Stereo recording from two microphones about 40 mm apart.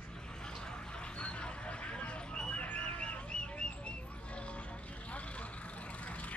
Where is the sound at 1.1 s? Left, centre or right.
Left.